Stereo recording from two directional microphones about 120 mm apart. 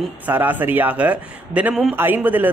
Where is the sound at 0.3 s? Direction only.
15° right (ahead or behind).